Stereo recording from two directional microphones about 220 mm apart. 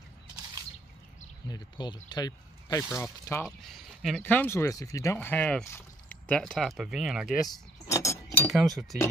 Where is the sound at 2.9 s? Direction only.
10° left (ahead or behind).